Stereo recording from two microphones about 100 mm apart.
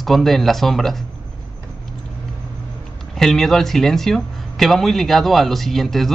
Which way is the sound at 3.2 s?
5° left (ahead or behind).